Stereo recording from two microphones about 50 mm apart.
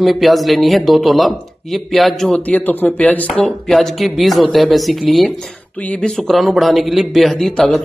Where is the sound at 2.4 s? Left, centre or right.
Left.